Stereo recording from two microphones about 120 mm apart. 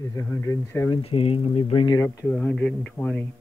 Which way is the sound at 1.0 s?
55° left (ahead or behind).